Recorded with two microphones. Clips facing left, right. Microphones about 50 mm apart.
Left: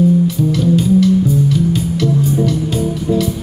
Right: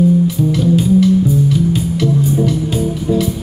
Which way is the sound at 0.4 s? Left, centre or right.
Centre.